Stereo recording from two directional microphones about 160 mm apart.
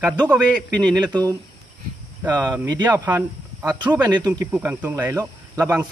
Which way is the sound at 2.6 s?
25° right (ahead or behind).